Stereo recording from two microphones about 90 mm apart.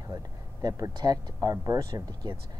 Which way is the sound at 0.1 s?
40° right (ahead or behind).